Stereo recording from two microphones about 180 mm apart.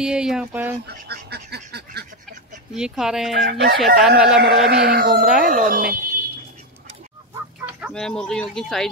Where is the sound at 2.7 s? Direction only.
5° right (ahead or behind).